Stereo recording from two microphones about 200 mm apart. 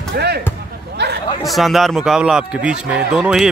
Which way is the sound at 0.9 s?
55° right (ahead or behind).